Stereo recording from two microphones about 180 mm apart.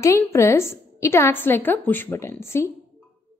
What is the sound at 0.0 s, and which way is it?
A woman's voice, 15° left (ahead or behind).